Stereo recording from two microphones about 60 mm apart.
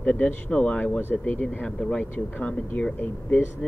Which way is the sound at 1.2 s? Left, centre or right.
Left.